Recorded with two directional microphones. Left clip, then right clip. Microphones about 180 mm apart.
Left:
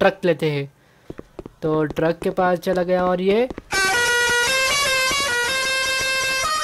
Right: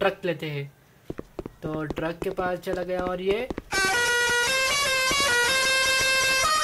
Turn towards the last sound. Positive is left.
turn(degrees=0)  # may be behind; listen again after turning